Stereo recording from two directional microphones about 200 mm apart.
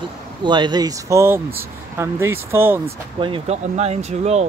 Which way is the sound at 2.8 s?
25° right (ahead or behind).